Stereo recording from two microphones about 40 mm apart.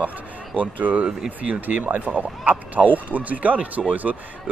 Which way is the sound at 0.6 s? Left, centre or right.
Right.